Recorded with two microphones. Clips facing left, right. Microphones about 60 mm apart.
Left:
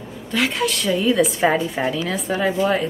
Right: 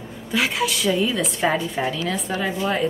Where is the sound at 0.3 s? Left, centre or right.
Centre.